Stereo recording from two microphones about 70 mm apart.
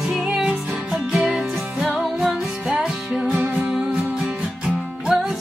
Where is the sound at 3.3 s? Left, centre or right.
Right.